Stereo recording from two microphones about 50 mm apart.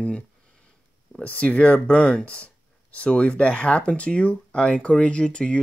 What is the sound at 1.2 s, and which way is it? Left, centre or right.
Speech, left.